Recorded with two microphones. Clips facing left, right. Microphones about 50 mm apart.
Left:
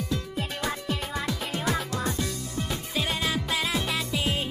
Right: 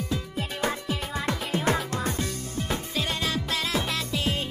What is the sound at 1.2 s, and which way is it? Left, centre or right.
Music, right.